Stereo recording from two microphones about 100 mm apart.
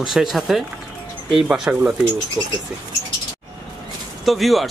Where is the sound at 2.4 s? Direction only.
40° right (ahead or behind).